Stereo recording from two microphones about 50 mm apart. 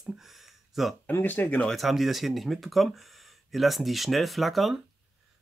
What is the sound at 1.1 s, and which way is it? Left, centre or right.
Speech, left.